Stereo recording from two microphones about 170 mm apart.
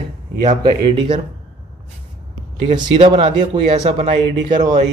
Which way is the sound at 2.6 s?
25° right (ahead or behind).